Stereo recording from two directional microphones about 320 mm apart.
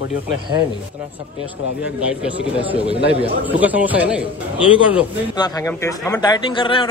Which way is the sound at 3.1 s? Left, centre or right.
Centre.